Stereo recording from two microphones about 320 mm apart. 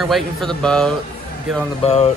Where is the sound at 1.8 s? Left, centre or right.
Left.